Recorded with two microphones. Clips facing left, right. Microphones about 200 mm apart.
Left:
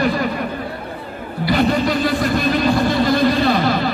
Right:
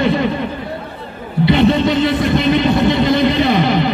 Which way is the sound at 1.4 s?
25° right (ahead or behind).